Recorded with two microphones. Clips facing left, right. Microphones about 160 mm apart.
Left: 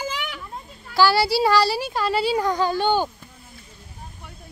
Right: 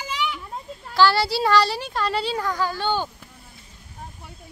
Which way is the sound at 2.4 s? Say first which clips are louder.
Left 4 dB; 20° left (ahead or behind).